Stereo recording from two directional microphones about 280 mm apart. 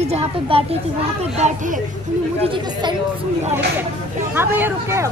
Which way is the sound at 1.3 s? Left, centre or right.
Right.